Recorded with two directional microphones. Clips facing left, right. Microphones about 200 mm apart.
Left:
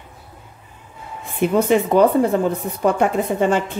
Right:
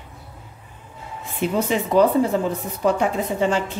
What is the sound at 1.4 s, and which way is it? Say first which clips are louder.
Speech: left 6 dB; 55° left (ahead or behind).